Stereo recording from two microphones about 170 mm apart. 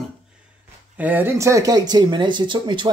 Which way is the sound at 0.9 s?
10° right (ahead or behind).